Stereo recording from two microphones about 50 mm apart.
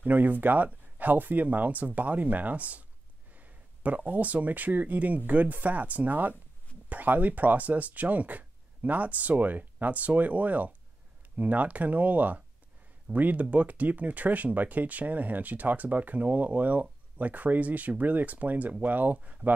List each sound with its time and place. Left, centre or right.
0.0 s speech: right